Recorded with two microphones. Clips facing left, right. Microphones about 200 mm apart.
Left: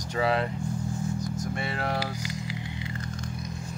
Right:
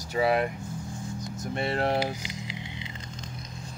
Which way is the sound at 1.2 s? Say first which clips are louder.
Left 1 dB; 25° right (ahead or behind).